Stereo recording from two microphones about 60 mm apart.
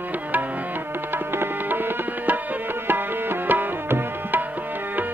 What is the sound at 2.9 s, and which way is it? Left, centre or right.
Tabla, right.